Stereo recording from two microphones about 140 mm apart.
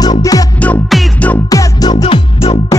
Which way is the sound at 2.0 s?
40° left (ahead or behind).